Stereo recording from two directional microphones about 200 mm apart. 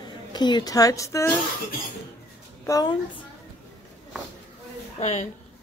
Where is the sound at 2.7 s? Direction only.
20° left (ahead or behind).